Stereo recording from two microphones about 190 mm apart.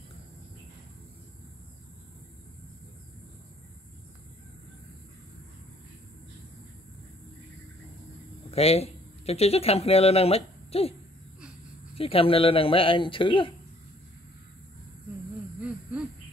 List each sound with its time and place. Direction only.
8.5 s speech: 35° left (ahead or behind)